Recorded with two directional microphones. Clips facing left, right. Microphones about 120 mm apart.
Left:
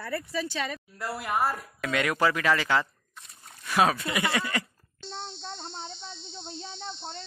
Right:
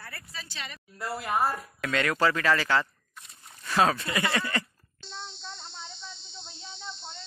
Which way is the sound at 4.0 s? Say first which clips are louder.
Left 1 dB; 20° left (ahead or behind).